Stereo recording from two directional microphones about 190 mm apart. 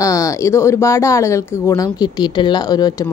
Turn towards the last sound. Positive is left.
turn(degrees=20)  # may be behind; listen again after turning